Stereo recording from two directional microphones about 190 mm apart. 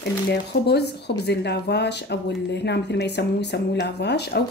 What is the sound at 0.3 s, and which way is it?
Speech, 60° left (ahead or behind).